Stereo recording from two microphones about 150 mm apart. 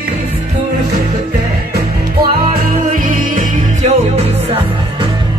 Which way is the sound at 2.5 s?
65° right (ahead or behind).